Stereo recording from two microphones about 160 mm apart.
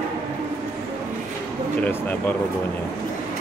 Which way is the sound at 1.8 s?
10° left (ahead or behind).